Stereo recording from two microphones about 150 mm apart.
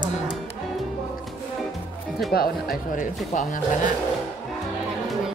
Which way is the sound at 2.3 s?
80° left.